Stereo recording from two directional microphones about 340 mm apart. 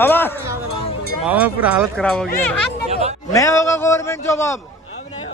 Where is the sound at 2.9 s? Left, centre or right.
Centre.